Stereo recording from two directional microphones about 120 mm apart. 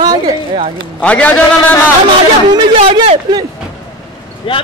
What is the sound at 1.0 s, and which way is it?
Speech, 10° left (ahead or behind).